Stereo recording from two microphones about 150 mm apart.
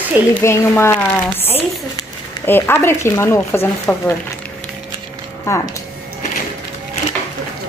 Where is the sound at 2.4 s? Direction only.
15° left (ahead or behind).